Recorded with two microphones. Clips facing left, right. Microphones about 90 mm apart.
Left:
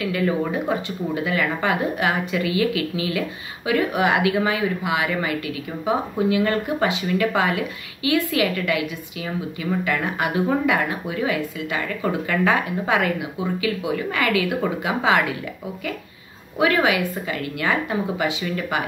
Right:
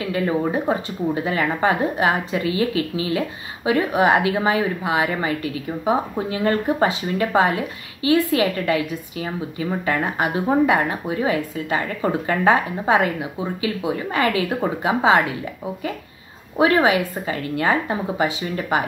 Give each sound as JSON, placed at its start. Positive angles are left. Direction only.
{"t": 0.0, "sound": "speech", "side_deg": -30}
{"t": 16.5, "sound": "speech", "side_deg": -30}